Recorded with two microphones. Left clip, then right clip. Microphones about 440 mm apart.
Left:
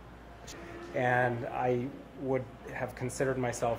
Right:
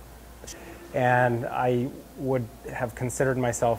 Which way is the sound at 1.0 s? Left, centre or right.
Right.